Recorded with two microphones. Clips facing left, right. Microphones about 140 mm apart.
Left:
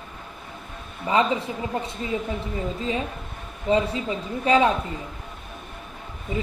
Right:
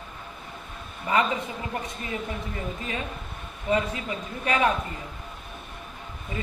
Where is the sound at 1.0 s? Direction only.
25° left (ahead or behind).